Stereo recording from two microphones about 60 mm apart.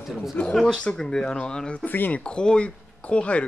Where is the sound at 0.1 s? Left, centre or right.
Centre.